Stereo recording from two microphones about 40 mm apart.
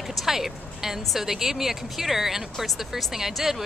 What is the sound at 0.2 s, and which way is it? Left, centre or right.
Speech, centre.